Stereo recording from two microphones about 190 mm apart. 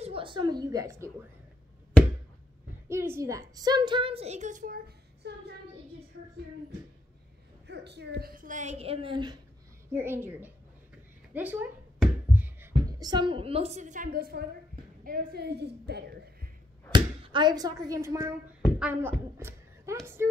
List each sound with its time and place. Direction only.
0.0 s a woman's voice: 30° right (ahead or behind)
2.9 s a woman's voice: 15° right (ahead or behind); by 5.3 s 55° right (ahead or behind)
7.6 s a woman's voice: 60° right (ahead or behind); by 9.4 s 25° right (ahead or behind)
9.9 s a woman's voice: 10° right (ahead or behind)
13.0 s a woman's voice: 25° right (ahead or behind); by 16.3 s 60° right (ahead or behind)
16.9 s a woman's voice: 25° right (ahead or behind); by 19.1 s 10° right (ahead or behind)
19.3 s a sound: 15° right (ahead or behind)
20.2 s a woman's voice: 15° right (ahead or behind)